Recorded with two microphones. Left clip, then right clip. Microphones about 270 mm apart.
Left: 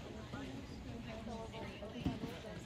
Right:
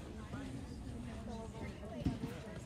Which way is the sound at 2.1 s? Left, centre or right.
Left.